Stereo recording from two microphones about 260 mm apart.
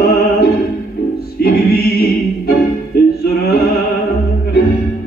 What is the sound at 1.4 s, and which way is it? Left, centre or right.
Music, left.